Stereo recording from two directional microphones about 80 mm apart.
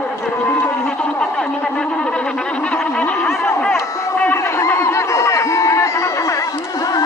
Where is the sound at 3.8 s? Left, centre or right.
Left.